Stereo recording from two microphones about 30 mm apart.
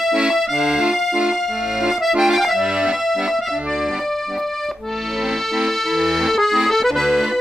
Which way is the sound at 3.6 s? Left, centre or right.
Right.